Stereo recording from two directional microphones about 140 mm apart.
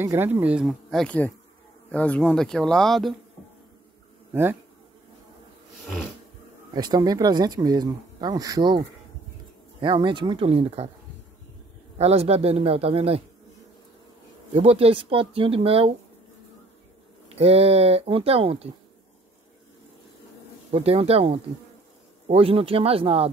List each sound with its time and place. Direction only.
0.0 s speech: 15° right (ahead or behind); by 3.2 s centre (ahead or behind)
4.3 s speech: 15° right (ahead or behind)
6.7 s speech: 30° right (ahead or behind); by 10.9 s 45° right (ahead or behind)
12.0 s speech: 50° right (ahead or behind)
14.5 s speech: 45° right (ahead or behind)
17.4 s speech: 45° right (ahead or behind)
20.7 s speech: 45° right (ahead or behind)